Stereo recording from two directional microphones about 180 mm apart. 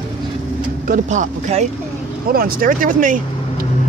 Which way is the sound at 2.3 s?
50° right (ahead or behind).